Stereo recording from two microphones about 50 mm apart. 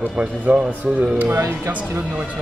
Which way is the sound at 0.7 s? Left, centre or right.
Right.